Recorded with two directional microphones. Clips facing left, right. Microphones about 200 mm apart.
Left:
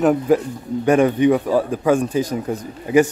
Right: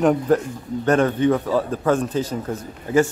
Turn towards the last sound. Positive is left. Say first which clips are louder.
# left 3 dB
turn(degrees=15)  # may be behind; listen again after turning